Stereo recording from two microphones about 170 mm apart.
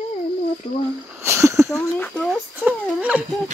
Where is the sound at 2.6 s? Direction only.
10° right (ahead or behind).